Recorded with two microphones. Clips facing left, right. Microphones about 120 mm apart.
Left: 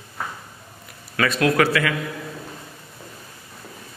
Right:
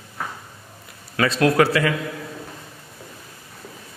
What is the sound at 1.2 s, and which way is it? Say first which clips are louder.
Speech: right 2 dB; 25° right (ahead or behind).